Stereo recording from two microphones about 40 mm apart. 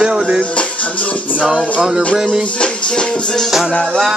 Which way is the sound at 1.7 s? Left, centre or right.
Centre.